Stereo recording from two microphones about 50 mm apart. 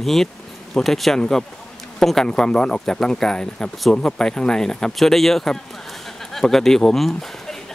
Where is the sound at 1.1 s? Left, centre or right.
Centre.